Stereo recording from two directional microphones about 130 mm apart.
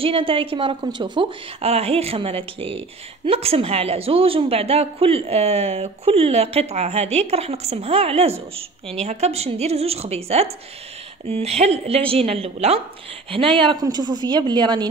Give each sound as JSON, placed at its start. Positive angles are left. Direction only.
{"t": 0.0, "sound": "a woman's voice", "side_deg": -45}
{"t": 1.6, "sound": "a woman's voice", "side_deg": -50}
{"t": 13.6, "sound": "a woman's voice", "side_deg": -35}